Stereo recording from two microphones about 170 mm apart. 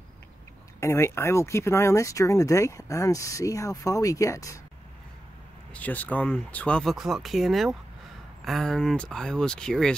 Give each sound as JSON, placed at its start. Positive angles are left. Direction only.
{"t": 0.7, "sound": "speech", "side_deg": 15}
{"t": 5.7, "sound": "speech", "side_deg": 10}